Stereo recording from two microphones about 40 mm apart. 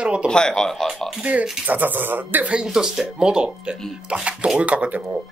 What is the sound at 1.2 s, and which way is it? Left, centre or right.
Speech, right.